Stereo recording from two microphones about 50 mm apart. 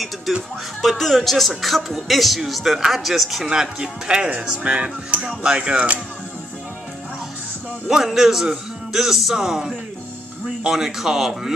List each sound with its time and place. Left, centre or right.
0.8 s speech: centre
3.4 s a man's voice: centre
7.9 s a man's voice: centre